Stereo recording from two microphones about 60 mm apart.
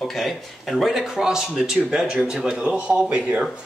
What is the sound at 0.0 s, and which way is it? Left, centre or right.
Speech, centre.